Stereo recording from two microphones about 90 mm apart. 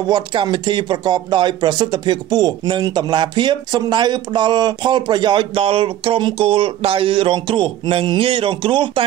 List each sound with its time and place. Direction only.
0.1 s speech: 60° right (ahead or behind)